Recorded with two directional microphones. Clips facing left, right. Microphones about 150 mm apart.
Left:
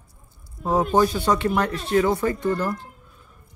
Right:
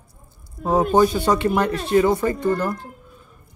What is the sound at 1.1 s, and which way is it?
Speech, centre (ahead or behind).